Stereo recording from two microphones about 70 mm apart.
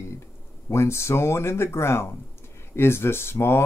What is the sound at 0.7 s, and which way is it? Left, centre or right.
Speech, left.